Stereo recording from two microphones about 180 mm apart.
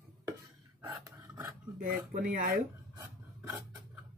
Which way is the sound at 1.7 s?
50° right (ahead or behind).